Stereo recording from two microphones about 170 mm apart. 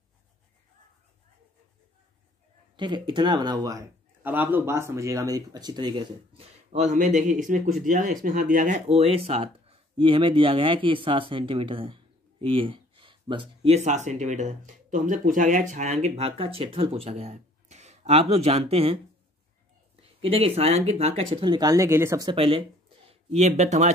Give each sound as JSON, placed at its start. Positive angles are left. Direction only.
{"t": 2.7, "sound": "a man's voice", "side_deg": -25}
{"t": 20.0, "sound": "speech", "side_deg": -35}
{"t": 22.3, "sound": "speech", "side_deg": -30}
{"t": 23.0, "sound": "speech", "side_deg": -40}